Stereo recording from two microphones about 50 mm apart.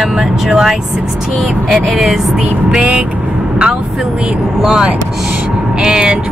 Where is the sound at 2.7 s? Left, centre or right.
Centre.